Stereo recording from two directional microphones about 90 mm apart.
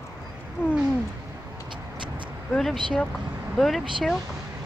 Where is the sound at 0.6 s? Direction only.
25° left (ahead or behind).